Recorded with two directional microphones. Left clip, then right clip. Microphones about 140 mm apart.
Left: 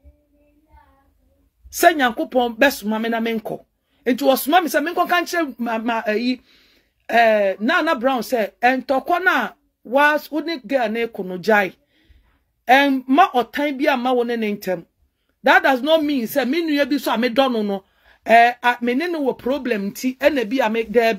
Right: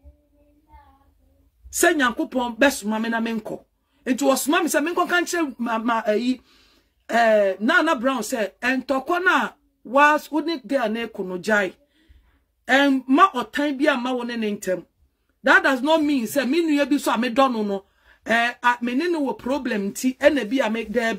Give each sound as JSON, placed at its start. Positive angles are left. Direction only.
{"t": 1.7, "sound": "speech", "side_deg": 25}